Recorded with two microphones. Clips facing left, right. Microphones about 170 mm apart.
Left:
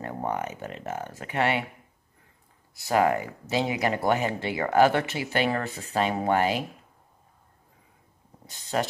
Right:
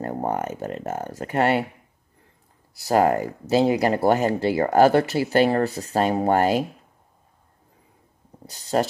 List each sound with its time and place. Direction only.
0.0 s speech: 40° right (ahead or behind)
2.7 s speech: 35° right (ahead or behind)
8.5 s speech: 35° right (ahead or behind)